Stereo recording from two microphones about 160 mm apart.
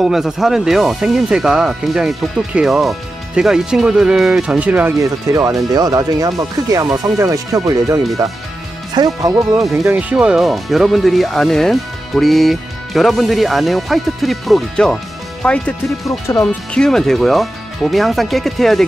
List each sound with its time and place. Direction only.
0.0 s speech: centre (ahead or behind)
16.3 s speech: 20° left (ahead or behind)
16.7 s speech: 5° left (ahead or behind)